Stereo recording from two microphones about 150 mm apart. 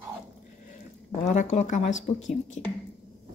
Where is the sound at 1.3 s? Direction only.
55° left (ahead or behind).